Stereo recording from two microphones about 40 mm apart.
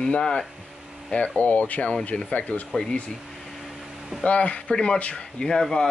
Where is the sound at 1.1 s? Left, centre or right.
Left.